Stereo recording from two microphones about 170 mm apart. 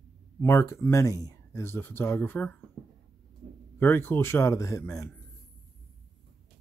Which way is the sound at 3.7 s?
15° left (ahead or behind).